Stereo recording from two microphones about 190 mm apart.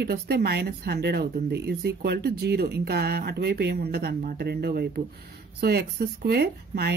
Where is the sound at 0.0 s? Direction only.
55° right (ahead or behind).